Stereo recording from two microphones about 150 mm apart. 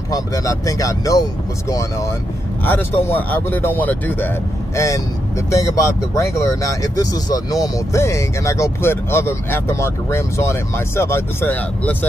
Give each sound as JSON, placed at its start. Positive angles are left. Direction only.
{"t": 0.1, "sound": "speech", "side_deg": 20}